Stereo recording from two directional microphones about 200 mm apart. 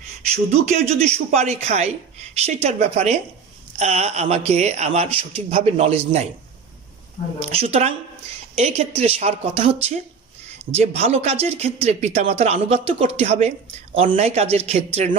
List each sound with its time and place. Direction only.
0.5 s speech: 30° right (ahead or behind)
7.4 s speech: 30° right (ahead or behind)
10.8 s speech: 30° right (ahead or behind)